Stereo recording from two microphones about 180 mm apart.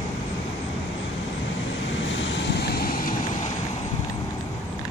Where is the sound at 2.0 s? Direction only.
90° left; by 3.1 s 55° left (ahead or behind).